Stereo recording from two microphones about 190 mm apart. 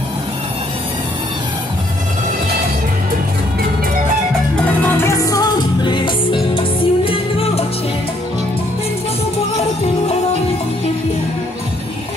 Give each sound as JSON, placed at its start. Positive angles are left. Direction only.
{"t": 4.8, "sound": "music", "side_deg": 15}